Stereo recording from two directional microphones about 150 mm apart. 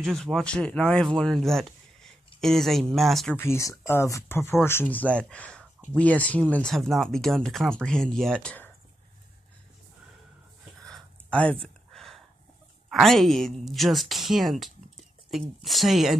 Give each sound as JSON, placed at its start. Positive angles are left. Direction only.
{"t": 0.0, "sound": "speech", "side_deg": 5}
{"t": 3.3, "sound": "speech", "side_deg": 20}
{"t": 10.8, "sound": "a sound", "side_deg": 5}
{"t": 12.9, "sound": "speech", "side_deg": 0}